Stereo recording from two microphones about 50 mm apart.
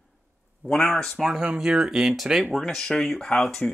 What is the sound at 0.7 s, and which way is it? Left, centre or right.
Speech, centre.